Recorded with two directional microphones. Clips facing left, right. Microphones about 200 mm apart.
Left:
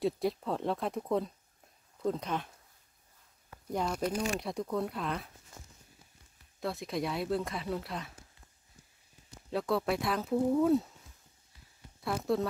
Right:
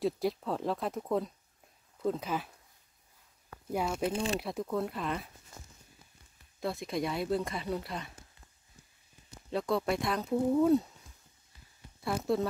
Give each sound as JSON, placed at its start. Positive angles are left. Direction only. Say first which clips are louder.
{"t": 0.0, "sound": "speech", "louder": "even", "side_deg": 0}
{"t": 3.7, "sound": "speech", "louder": "right 1 dB", "side_deg": -5}
{"t": 4.1, "sound": "speech", "louder": "right 1 dB", "side_deg": -30}
{"t": 4.4, "sound": "speech", "louder": "even", "side_deg": -5}
{"t": 6.6, "sound": "speech", "louder": "right 1 dB", "side_deg": 0}
{"t": 9.5, "sound": "speech", "louder": "even", "side_deg": 0}
{"t": 12.0, "sound": "speech", "louder": "right 1 dB", "side_deg": 0}